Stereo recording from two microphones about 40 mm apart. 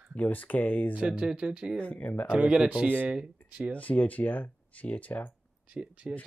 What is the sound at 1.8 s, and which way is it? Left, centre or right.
Speech, left.